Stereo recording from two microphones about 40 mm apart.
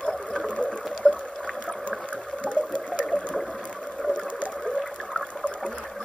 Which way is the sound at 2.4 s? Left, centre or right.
Left.